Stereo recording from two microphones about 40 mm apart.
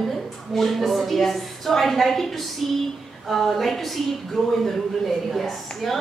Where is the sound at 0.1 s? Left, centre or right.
Centre.